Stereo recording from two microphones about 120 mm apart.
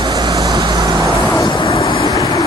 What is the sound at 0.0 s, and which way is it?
Vehicle, 30° right (ahead or behind).